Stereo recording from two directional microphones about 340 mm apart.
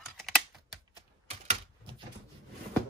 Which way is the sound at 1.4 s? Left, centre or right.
Centre.